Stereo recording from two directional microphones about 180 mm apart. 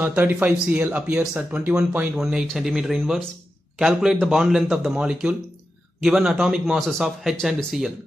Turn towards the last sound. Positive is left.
turn(degrees=0)  # may be behind; listen again after turning